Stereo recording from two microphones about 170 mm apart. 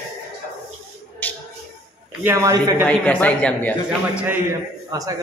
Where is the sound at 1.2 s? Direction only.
10° left (ahead or behind).